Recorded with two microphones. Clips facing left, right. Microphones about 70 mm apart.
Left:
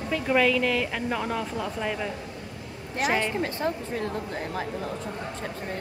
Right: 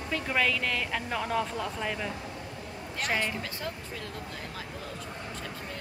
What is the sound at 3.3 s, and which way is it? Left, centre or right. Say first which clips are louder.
Speech: left 9 dB; left.